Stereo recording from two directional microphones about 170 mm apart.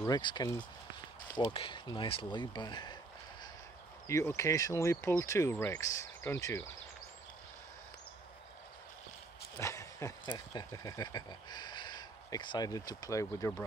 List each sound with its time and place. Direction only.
0.0 s speech: 25° left (ahead or behind)
4.1 s speech: 15° left (ahead or behind)
9.6 s speech: 15° left (ahead or behind)